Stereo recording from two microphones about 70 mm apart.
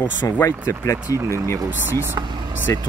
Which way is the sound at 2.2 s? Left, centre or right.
Right.